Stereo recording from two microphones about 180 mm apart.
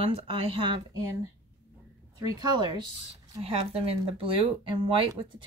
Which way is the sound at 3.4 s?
35° right (ahead or behind).